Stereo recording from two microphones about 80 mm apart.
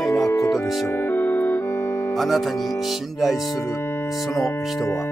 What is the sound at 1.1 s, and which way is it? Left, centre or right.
Music, left.